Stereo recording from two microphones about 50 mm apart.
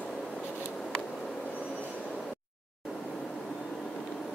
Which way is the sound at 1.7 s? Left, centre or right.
Left.